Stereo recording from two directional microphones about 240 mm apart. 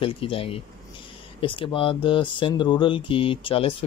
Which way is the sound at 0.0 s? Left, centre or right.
Left.